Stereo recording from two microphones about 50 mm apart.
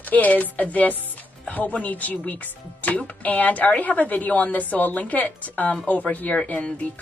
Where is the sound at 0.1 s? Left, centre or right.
Left.